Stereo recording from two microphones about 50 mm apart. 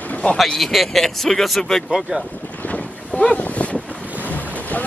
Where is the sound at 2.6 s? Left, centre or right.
Left.